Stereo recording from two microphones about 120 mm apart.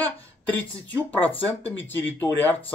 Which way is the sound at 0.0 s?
15° left (ahead or behind).